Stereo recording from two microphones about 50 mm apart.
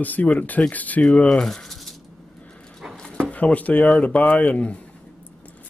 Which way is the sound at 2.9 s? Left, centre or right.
Centre.